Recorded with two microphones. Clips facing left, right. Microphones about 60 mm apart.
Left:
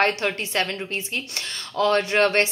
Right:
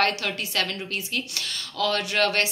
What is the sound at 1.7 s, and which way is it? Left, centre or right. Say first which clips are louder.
Speech: left 5 dB; left.